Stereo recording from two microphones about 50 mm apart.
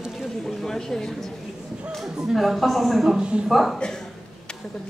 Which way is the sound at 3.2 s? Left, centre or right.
Centre.